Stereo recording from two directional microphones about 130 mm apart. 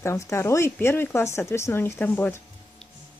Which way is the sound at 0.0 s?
20° left (ahead or behind).